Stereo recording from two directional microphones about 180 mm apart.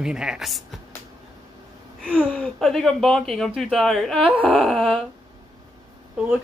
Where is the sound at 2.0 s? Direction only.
5° left (ahead or behind).